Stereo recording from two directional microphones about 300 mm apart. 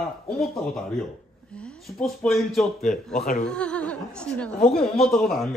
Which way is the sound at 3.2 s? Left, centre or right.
Left.